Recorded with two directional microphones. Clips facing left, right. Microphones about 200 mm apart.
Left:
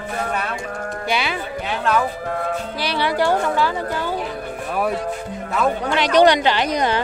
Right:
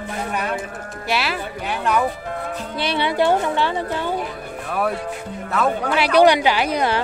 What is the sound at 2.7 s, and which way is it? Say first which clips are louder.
A woman's voice: right 2 dB; 25° right (ahead or behind).